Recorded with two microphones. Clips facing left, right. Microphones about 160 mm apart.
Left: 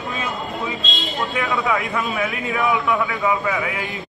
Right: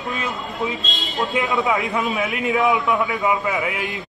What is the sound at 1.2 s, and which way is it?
A man's voice, 20° right (ahead or behind).